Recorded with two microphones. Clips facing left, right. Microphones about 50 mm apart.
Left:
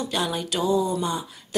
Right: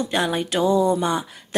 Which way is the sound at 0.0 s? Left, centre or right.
Right.